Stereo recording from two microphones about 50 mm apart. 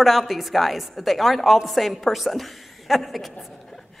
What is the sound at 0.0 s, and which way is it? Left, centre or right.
A woman's voice, centre.